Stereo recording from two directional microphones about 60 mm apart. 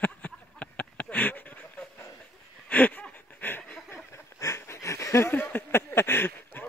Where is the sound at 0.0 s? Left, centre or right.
Left.